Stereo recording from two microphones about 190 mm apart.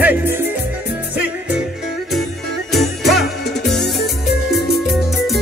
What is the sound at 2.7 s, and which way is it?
Music, centre (ahead or behind).